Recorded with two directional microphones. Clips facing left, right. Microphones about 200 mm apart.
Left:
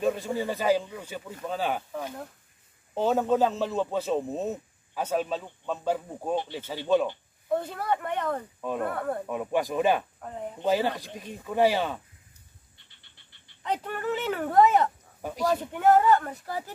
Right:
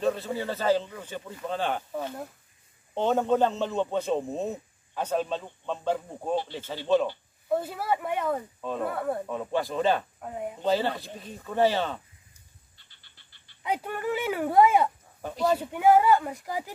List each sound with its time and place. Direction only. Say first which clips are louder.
0.0 s speech: left 1 dB; 15° left (ahead or behind)
2.9 s a man's voice: even; 5° left (ahead or behind)
6.3 s speech: right 1 dB; 20° left (ahead or behind)
7.4 s speech: even; 5° right (ahead or behind)
8.5 s speech: left 1 dB; 10° left (ahead or behind)
8.8 s a man's voice: right 3 dB; 5° right (ahead or behind)
9.3 s speech: left 1 dB; 15° left (ahead or behind)
10.2 s speech: right 2 dB; 10° right (ahead or behind)
10.6 s speech: left 1 dB; 10° left (ahead or behind)
13.6 s speech: even; 10° right (ahead or behind)
15.2 s speech: right 1 dB; 10° left (ahead or behind)
15.5 s speech: right 1 dB; 5° right (ahead or behind)